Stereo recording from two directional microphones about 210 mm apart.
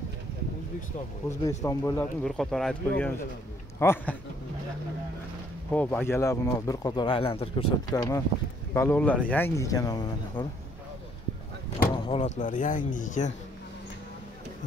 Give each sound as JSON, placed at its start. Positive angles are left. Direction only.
{"t": 1.6, "sound": "speech", "side_deg": 15}
{"t": 5.7, "sound": "speech", "side_deg": 5}
{"t": 11.9, "sound": "door", "side_deg": 25}
{"t": 12.4, "sound": "speech", "side_deg": 40}